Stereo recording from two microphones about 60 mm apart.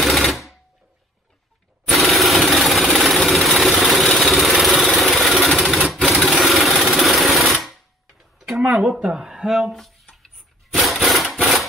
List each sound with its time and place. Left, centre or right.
0.0 s machine gun: centre
1.9 s vehicle: centre
5.6 s sewing machine: centre
6.2 s vehicle: centre
7.6 s clang: centre
8.6 s a sound: right
9.0 s speech: centre
9.7 s speech: centre
10.1 s sewing machine: centre